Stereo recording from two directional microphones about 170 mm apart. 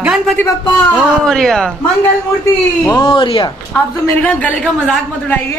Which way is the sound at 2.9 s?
30° left (ahead or behind).